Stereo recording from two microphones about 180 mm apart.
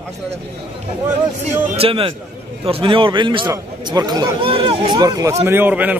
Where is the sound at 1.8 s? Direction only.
30° right (ahead or behind).